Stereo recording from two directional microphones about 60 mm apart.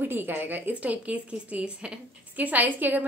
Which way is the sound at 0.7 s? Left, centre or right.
Right.